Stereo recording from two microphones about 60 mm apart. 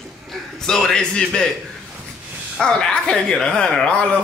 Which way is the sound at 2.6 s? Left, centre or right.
Centre.